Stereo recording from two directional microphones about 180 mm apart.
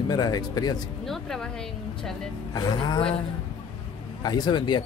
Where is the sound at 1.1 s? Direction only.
Centre (ahead or behind).